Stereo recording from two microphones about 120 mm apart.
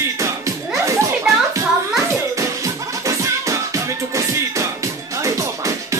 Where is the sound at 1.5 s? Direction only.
25° right (ahead or behind).